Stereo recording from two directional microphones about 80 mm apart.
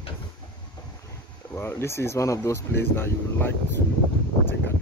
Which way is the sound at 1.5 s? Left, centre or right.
Left.